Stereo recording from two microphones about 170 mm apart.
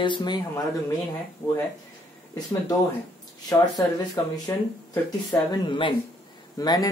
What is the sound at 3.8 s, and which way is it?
Speech, 20° left (ahead or behind).